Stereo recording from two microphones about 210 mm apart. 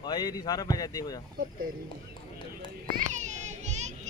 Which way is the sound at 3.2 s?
35° right (ahead or behind).